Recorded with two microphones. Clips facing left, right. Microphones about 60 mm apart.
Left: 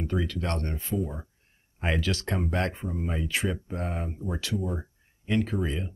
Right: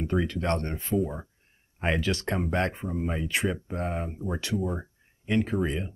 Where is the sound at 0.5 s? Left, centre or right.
Right.